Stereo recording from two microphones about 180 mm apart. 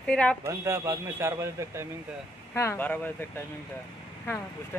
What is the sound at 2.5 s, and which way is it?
Speech, 10° left (ahead or behind).